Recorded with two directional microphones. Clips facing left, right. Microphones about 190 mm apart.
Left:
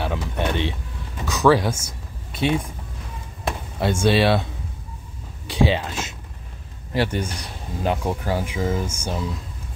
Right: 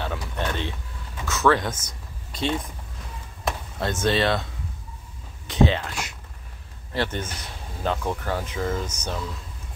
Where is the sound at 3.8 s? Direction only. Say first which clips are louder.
Left 4 dB; 10° left (ahead or behind).